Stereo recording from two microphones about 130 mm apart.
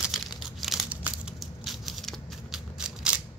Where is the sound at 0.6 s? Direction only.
Centre (ahead or behind).